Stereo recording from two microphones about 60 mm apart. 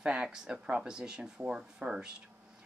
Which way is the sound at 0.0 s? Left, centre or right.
Centre.